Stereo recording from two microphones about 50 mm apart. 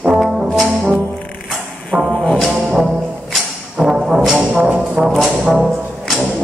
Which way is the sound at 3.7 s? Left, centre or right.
Centre.